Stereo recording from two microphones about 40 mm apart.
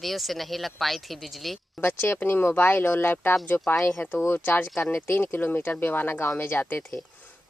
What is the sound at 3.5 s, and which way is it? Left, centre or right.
Speech, left.